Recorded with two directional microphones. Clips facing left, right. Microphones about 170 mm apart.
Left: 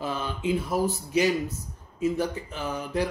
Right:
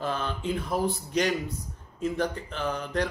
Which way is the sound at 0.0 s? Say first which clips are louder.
Left 1 dB; 10° left (ahead or behind).